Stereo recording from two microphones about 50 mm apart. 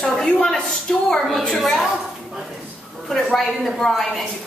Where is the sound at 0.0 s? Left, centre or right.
Centre.